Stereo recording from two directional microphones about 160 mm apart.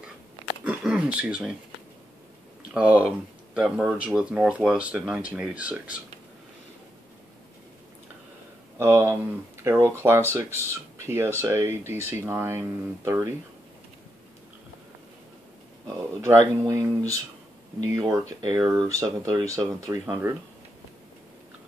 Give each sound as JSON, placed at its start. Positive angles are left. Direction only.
{"t": 0.7, "sound": "a sound", "side_deg": -5}
{"t": 2.7, "sound": "speech", "side_deg": -10}
{"t": 8.7, "sound": "speech", "side_deg": -15}
{"t": 16.0, "sound": "speech", "side_deg": -15}